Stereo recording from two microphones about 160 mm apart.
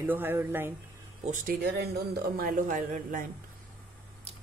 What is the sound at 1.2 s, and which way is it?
Speech, 55° right (ahead or behind).